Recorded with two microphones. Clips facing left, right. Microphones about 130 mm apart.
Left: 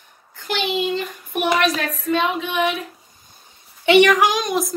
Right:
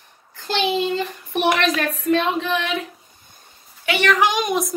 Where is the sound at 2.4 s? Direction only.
90° right.